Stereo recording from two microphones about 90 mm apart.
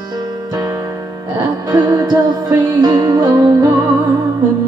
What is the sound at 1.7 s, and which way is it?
Music, 45° right (ahead or behind).